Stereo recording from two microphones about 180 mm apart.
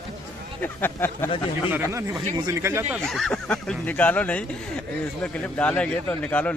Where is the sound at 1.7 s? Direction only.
10° right (ahead or behind).